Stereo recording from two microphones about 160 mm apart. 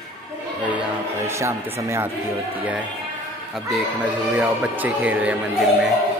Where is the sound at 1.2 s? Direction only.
15° right (ahead or behind).